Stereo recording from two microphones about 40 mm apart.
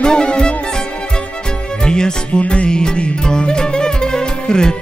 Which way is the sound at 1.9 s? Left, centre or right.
Centre.